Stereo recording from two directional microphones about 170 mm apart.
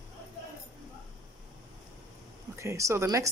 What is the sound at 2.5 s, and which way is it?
Speech, 15° right (ahead or behind).